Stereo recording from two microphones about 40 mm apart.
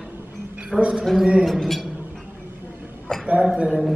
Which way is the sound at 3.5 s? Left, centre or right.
Right.